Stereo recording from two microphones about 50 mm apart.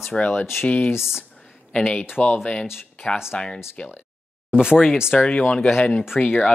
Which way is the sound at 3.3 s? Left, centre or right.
Left.